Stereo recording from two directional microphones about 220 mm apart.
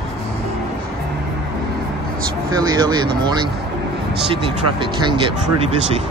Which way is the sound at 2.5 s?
20° right (ahead or behind).